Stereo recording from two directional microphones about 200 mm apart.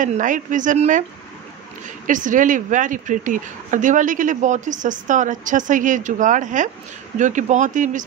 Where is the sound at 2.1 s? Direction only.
40° right (ahead or behind).